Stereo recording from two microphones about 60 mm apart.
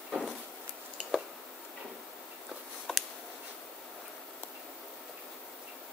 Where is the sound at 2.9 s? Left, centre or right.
Centre.